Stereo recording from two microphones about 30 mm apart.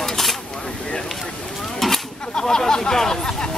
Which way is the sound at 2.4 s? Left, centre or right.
Centre.